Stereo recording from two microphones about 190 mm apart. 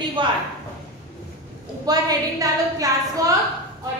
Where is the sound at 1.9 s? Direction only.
20° right (ahead or behind).